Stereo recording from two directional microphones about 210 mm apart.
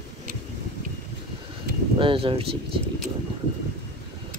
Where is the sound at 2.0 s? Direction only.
25° right (ahead or behind).